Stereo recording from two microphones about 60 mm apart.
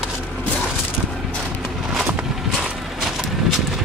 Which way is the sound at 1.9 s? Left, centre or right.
Centre.